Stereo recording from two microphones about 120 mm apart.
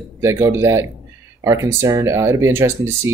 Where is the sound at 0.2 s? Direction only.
25° right (ahead or behind).